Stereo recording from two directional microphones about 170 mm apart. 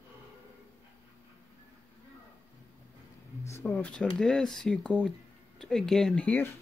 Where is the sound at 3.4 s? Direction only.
15° left (ahead or behind).